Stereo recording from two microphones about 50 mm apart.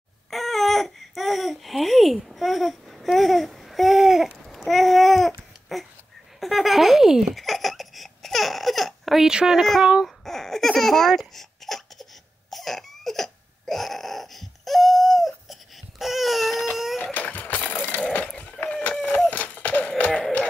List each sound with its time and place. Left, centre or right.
0.3 s baby cry: centre
4.5 s babbling: centre
6.4 s speech: centre
7.3 s baby laughter: centre
9.3 s speech: centre
9.6 s speech: centre
10.2 s baby laughter: centre
16.7 s a sound: centre
17.0 s a sound: left